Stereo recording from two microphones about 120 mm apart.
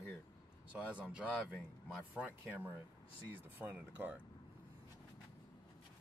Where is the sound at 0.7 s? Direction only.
10° right (ahead or behind).